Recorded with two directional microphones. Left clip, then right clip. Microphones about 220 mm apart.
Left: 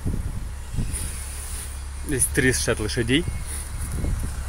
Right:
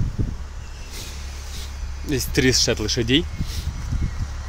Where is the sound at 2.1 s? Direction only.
20° right (ahead or behind).